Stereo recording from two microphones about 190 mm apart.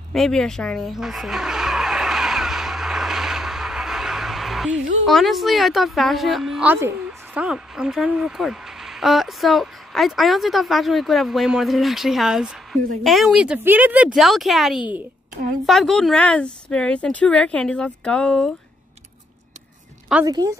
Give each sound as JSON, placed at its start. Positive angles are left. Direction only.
{"t": 0.1, "sound": "a sound", "side_deg": 0}
{"t": 5.0, "sound": "speech", "side_deg": 0}
{"t": 20.2, "sound": "a woman's voice", "side_deg": -20}